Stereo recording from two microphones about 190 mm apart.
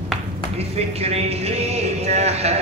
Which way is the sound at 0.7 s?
35° right (ahead or behind).